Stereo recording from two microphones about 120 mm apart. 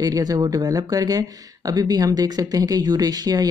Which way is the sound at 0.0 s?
30° right (ahead or behind).